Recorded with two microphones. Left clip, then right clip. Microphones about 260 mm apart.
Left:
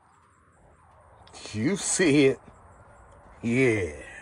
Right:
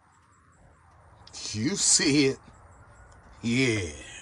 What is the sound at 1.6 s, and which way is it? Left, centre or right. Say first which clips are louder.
Speech: even; centre.